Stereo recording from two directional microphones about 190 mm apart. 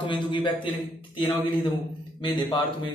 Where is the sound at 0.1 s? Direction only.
25° left (ahead or behind).